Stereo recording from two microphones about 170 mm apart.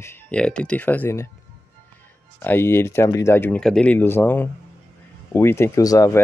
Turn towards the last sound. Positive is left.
turn(degrees=20)  # may be behind; listen again after turning